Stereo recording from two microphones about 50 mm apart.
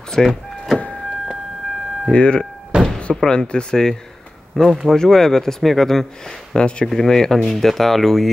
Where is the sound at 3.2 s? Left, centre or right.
Centre.